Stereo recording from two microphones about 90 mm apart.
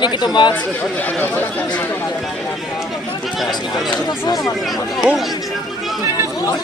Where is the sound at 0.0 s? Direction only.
55° left (ahead or behind).